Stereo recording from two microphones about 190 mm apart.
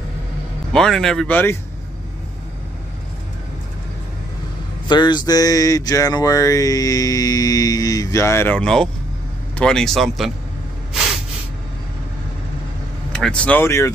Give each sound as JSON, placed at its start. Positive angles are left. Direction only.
{"t": 0.7, "sound": "speech", "side_deg": 0}
{"t": 4.8, "sound": "a sound", "side_deg": 25}
{"t": 9.6, "sound": "speech", "side_deg": 5}
{"t": 10.9, "sound": "snort", "side_deg": 0}
{"t": 13.1, "sound": "speech", "side_deg": 5}